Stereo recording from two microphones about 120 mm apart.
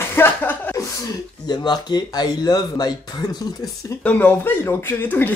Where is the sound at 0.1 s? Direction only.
15° left (ahead or behind).